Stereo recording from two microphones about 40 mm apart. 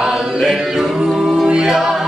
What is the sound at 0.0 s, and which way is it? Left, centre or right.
A capella, centre.